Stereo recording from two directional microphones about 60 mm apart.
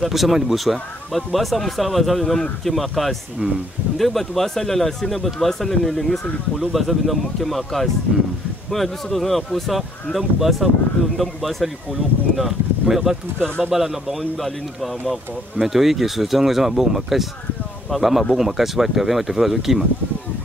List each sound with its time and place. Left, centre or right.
0.0 s speech: centre